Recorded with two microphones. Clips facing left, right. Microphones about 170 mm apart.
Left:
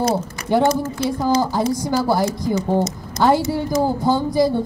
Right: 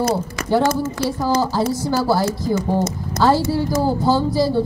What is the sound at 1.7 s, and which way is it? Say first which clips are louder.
Speech: even; 15° left (ahead or behind).